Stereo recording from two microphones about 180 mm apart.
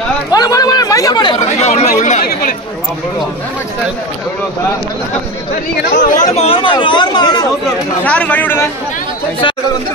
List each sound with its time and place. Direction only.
0.3 s speech: 20° left (ahead or behind)
1.6 s speech: 40° left (ahead or behind)
5.9 s speech: 45° left (ahead or behind); by 7.4 s 25° left (ahead or behind)
8.0 s speech: 10° left (ahead or behind)